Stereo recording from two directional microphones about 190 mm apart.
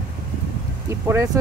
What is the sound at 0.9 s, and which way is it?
Speech, 15° right (ahead or behind).